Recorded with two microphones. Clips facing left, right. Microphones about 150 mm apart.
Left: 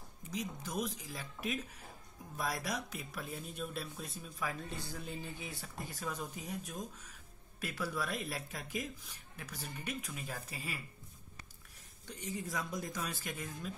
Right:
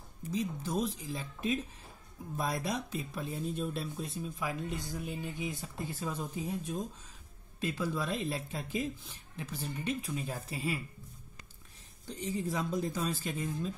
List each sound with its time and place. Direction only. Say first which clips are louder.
0.3 s speech: right 6 dB; 25° right (ahead or behind)
12.2 s speech: right 6 dB; 30° right (ahead or behind)